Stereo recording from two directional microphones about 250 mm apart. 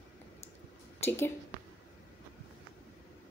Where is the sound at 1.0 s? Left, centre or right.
Centre.